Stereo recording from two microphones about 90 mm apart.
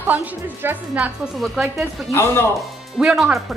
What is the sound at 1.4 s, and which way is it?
Speech, centre (ahead or behind).